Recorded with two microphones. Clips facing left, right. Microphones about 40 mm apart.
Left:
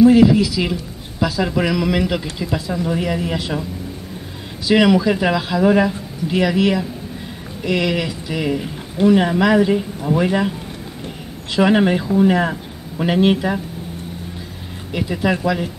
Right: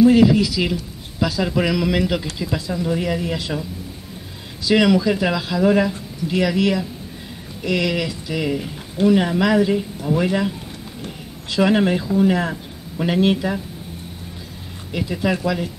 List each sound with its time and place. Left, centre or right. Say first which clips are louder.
0.0 s speech: left 2 dB; centre
4.6 s speech: left 2 dB; centre
11.5 s speech: left 2 dB; centre
14.9 s speech: left 2 dB; centre